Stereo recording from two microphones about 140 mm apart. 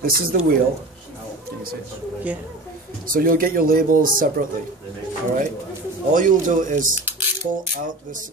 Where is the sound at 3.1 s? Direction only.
90° right.